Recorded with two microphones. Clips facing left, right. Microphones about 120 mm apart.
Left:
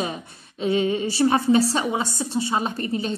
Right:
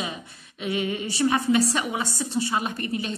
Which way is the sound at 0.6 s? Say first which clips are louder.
Left 6 dB; 30° left (ahead or behind).